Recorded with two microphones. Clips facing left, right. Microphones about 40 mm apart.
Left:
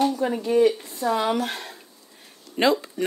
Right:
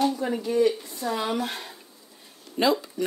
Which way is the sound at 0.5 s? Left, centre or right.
Left.